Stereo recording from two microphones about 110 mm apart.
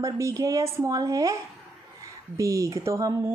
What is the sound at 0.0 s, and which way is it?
Speech, 30° right (ahead or behind).